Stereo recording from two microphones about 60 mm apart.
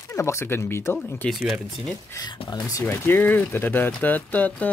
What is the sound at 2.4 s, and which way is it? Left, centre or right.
Speech, left.